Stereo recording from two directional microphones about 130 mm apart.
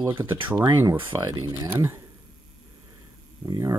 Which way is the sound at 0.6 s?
30° right (ahead or behind).